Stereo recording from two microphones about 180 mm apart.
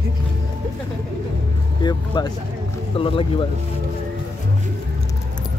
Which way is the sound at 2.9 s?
30° left (ahead or behind).